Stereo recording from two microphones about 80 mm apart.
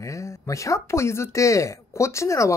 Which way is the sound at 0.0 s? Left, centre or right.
Left.